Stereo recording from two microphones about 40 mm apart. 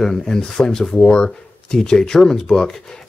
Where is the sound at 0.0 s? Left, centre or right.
Centre.